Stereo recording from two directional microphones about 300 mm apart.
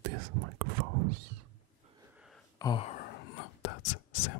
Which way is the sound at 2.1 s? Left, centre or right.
Centre.